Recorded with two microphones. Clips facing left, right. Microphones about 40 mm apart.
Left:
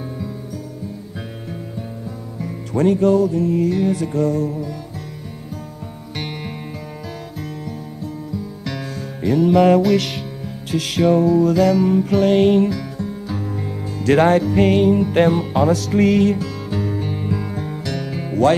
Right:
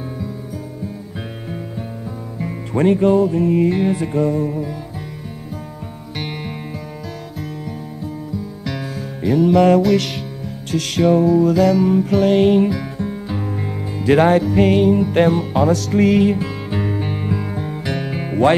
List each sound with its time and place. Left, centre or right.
2.4 s music: right
6.1 s music: centre
8.6 s music: centre
12.6 s music: right
14.1 s music: centre
16.3 s music: right
17.8 s music: right